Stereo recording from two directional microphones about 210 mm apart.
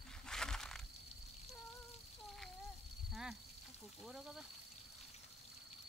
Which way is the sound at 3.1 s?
5° right (ahead or behind).